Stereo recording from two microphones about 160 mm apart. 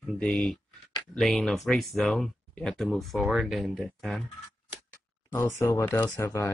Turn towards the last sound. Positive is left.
turn(degrees=15)  # may be behind; listen again after turning